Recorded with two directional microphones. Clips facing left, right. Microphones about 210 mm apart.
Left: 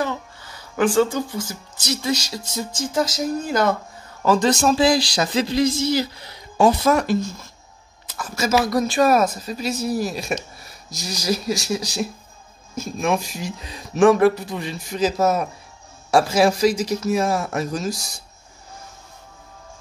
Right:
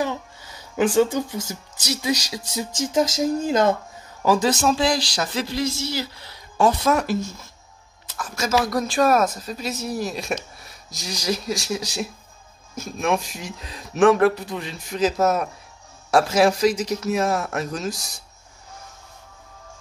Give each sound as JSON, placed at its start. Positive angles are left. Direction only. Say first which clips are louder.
{"t": 0.0, "sound": "a sound", "louder": "even", "side_deg": -15}
{"t": 1.9, "sound": "speech", "louder": "left 1 dB", "side_deg": -15}
{"t": 4.2, "sound": "a man's voice", "louder": "left 2 dB", "side_deg": -10}
{"t": 6.8, "sound": "speech", "louder": "left 2 dB", "side_deg": 0}